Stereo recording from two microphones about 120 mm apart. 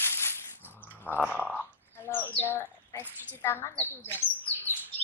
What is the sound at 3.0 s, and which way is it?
Speech, 15° right (ahead or behind).